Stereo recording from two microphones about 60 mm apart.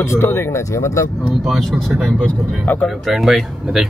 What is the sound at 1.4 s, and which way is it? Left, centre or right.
Speech, centre.